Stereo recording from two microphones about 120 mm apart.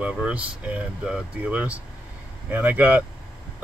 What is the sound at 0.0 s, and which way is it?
Speech, 10° right (ahead or behind).